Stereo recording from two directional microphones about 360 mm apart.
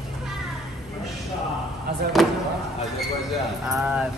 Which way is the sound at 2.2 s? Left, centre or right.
Centre.